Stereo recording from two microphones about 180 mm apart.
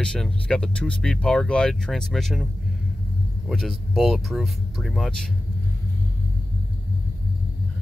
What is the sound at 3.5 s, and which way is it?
Speech, centre (ahead or behind).